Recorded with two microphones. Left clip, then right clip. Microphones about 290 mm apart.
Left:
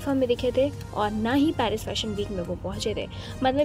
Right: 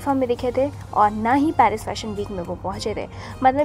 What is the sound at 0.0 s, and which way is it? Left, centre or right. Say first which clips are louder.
A woman's voice: right 3 dB; centre.